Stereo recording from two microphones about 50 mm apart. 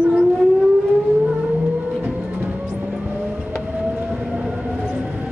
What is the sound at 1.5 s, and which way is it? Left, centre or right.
Vehicle, centre.